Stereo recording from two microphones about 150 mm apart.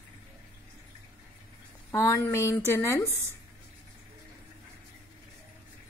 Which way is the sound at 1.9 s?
20° left (ahead or behind).